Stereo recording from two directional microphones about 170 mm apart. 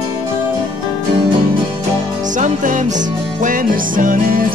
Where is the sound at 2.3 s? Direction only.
50° right (ahead or behind).